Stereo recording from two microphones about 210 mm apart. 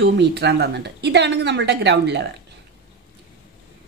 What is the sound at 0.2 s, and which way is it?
A woman's voice, 55° right (ahead or behind).